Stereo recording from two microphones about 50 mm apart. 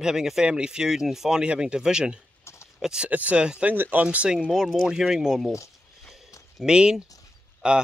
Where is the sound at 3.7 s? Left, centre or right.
Right.